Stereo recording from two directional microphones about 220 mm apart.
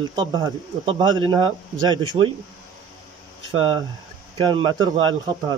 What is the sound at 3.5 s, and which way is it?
Speech, 25° right (ahead or behind).